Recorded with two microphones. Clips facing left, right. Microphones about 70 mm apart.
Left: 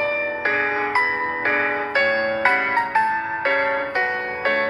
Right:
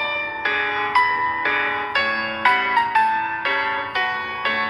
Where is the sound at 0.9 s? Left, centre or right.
Left.